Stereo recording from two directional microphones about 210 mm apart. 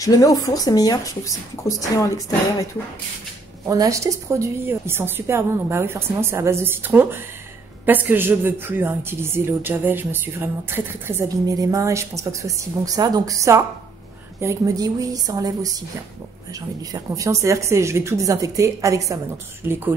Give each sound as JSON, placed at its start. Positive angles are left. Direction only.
{"t": 0.0, "sound": "speech", "side_deg": 15}
{"t": 3.6, "sound": "speech", "side_deg": -15}
{"t": 16.9, "sound": "speech", "side_deg": -15}